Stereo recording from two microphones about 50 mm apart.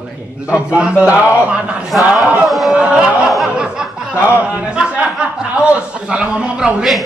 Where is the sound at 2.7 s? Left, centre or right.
Centre.